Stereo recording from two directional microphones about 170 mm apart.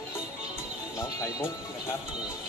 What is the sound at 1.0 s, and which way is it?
Music, 15° left (ahead or behind).